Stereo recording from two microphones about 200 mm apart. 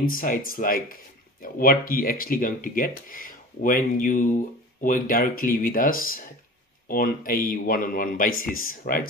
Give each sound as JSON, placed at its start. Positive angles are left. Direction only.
{"t": 0.0, "sound": "speech", "side_deg": 45}